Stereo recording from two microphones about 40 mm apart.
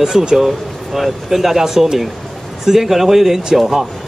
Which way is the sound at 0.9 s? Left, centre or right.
Centre.